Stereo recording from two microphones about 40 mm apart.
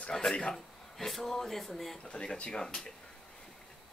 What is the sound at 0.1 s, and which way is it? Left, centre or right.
Speech, centre.